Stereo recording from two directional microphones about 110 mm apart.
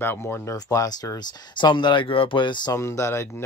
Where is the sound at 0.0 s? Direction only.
20° left (ahead or behind).